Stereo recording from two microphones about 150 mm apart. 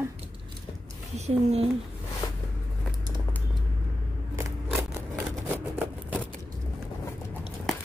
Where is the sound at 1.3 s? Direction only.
45° right (ahead or behind).